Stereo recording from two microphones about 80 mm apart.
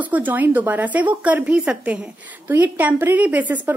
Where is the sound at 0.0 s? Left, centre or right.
Right.